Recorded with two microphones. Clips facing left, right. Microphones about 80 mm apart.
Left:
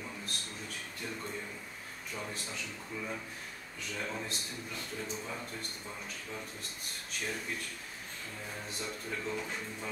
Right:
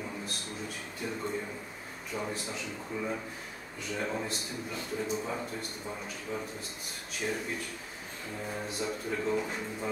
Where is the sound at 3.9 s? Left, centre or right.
Centre.